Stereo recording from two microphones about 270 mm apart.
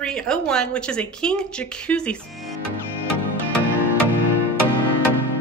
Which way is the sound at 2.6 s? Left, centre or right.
Left.